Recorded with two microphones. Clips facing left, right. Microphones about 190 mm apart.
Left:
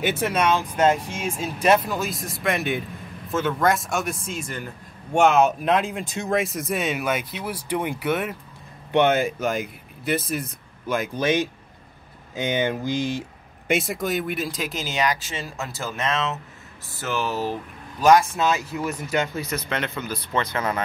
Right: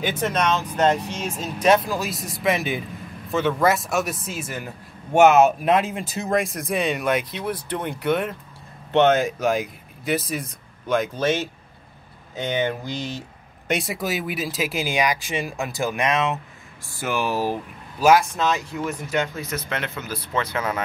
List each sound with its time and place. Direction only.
0.0 s a man's voice: 10° left (ahead or behind)
11.1 s speech: 15° left (ahead or behind)
13.7 s a man's voice: centre (ahead or behind)
18.4 s a man's voice: 5° left (ahead or behind)